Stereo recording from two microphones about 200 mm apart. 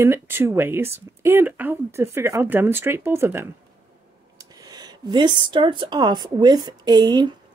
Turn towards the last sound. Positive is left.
turn(degrees=-20)  # may be behind; listen again after turning